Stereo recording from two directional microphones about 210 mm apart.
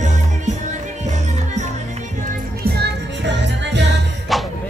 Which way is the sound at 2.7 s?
55° right (ahead or behind).